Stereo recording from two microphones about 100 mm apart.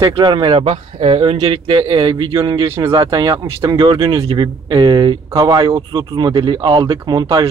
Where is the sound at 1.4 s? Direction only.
55° right (ahead or behind).